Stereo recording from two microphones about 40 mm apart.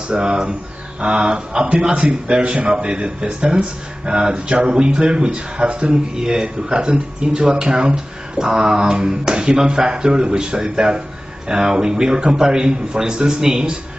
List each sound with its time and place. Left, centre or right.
0.1 s speech: right